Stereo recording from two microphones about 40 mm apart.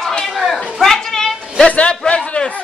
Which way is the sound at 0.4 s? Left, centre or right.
Centre.